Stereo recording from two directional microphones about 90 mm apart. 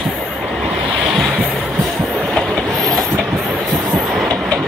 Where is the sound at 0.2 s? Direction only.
10° left (ahead or behind).